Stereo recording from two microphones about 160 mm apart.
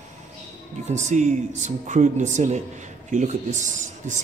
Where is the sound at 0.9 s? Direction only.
45° right (ahead or behind).